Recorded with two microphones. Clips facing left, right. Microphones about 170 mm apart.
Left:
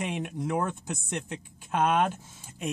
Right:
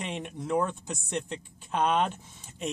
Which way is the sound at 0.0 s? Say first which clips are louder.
Left 4 dB; 5° left (ahead or behind).